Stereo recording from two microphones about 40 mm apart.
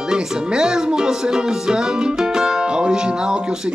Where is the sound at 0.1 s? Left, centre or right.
Centre.